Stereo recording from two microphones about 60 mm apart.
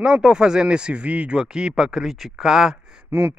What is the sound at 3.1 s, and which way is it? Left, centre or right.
Speech, right.